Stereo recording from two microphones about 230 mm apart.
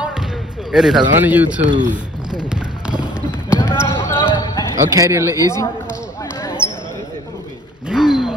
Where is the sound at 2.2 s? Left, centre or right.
Centre.